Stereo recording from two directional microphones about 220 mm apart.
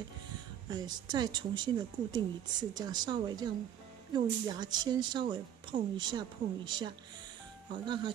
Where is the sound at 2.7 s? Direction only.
20° right (ahead or behind).